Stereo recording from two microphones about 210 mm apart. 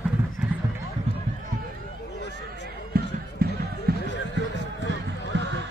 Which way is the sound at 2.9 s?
45° right (ahead or behind).